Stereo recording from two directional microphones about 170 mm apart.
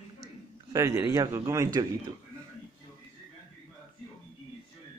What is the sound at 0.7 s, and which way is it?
A man's voice, 20° right (ahead or behind).